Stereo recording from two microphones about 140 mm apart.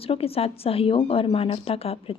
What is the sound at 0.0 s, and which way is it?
A woman's voice, 45° left (ahead or behind).